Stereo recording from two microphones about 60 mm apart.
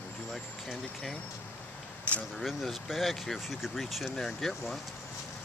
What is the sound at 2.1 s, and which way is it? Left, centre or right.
Speech, left.